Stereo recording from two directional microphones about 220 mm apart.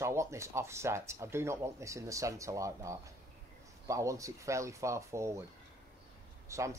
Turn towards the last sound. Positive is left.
turn(degrees=-15)  # may be behind; listen again after turning